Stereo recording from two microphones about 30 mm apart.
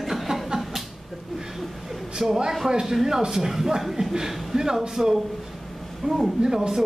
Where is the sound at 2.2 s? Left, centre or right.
Centre.